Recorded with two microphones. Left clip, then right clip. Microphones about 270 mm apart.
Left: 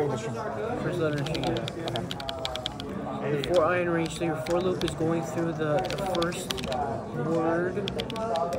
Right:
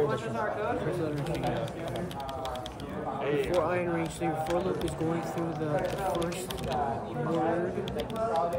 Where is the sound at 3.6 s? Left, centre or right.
Left.